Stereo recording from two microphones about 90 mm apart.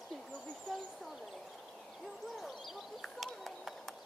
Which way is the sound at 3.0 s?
Centre (ahead or behind).